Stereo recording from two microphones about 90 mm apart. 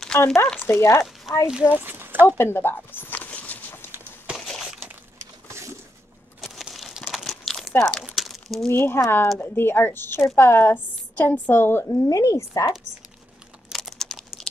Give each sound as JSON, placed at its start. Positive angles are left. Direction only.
{"t": 0.1, "sound": "a woman's voice", "side_deg": 25}
{"t": 1.5, "sound": "speech", "side_deg": -10}
{"t": 1.8, "sound": "a sound", "side_deg": -20}
{"t": 2.2, "sound": "a woman's voice", "side_deg": 25}
{"t": 3.2, "sound": "clip-clop", "side_deg": 15}
{"t": 6.4, "sound": "crumpling", "side_deg": 0}
{"t": 8.6, "sound": "a woman's voice", "side_deg": 25}
{"t": 11.9, "sound": "speech", "side_deg": 40}
{"t": 13.7, "sound": "crumpling", "side_deg": 0}